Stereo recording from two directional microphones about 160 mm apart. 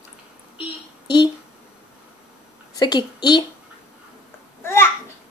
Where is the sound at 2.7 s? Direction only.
25° left (ahead or behind).